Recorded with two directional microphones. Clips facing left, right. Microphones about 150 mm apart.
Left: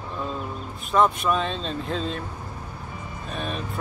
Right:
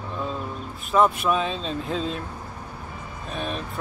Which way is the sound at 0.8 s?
5° right (ahead or behind).